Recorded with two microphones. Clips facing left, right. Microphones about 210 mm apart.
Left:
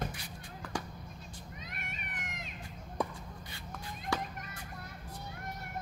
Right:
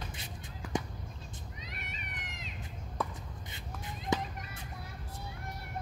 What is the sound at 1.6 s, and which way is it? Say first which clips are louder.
Cat: left 1 dB; 50° left (ahead or behind).